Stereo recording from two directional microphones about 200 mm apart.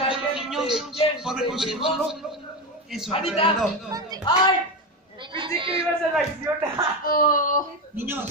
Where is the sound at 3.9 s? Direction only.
20° right (ahead or behind).